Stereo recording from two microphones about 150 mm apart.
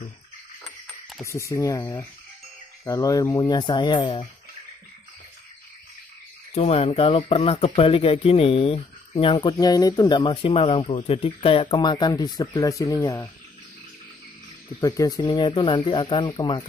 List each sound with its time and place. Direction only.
1.2 s speech: 20° left (ahead or behind); by 4.3 s 35° left (ahead or behind)
6.5 s speech: 40° left (ahead or behind)
9.6 s speech: 25° left (ahead or behind)
14.8 s speech: 25° left (ahead or behind)